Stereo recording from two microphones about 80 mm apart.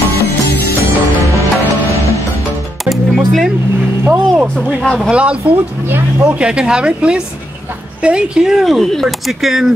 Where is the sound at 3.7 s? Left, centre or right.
Right.